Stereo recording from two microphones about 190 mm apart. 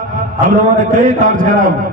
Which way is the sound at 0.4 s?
45° right (ahead or behind).